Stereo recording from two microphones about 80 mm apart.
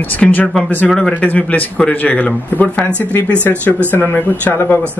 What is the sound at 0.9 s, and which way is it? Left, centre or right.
Speech, centre.